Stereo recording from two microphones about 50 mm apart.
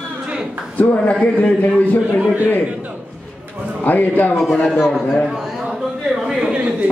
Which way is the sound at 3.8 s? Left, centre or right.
Left.